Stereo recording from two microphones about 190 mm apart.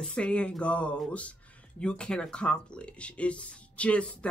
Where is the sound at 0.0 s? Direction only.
5° left (ahead or behind).